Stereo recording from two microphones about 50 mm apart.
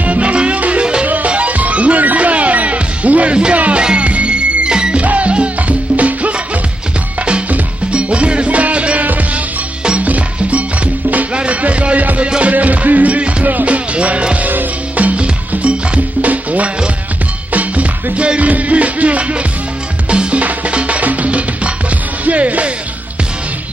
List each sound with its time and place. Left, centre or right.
0.0 s music: right
5.0 s music: right